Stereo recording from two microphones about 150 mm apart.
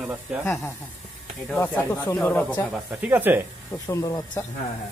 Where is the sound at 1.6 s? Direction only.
10° left (ahead or behind).